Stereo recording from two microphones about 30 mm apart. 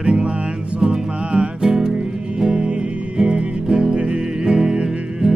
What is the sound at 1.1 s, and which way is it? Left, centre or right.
Music, right.